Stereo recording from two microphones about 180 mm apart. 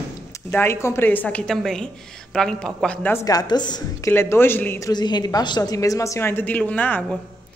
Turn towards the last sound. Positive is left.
turn(degrees=10)  # may be behind; listen again after turning